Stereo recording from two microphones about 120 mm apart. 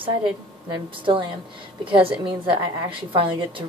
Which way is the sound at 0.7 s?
45° right (ahead or behind).